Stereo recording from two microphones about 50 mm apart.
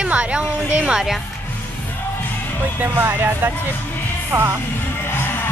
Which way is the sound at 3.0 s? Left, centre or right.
Right.